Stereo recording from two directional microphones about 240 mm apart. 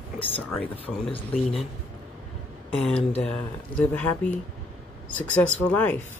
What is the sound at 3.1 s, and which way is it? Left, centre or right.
Speech, left.